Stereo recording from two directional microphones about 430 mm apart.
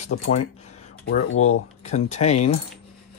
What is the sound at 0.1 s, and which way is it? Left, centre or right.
Speech, left.